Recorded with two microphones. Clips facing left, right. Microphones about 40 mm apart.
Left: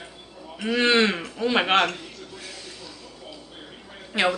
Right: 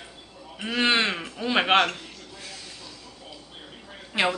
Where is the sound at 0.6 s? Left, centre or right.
Centre.